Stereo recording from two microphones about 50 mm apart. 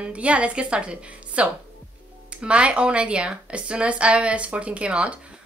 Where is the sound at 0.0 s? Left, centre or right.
Right.